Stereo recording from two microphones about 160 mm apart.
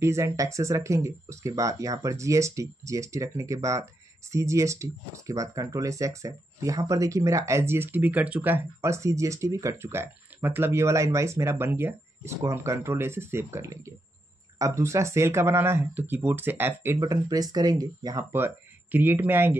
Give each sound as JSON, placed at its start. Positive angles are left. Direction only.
{"t": 0.0, "sound": "speech", "side_deg": -20}